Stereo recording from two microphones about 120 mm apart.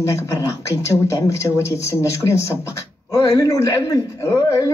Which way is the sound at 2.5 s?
25° left (ahead or behind).